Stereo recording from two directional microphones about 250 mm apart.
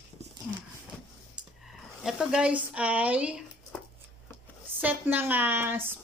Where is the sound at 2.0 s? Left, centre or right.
Centre.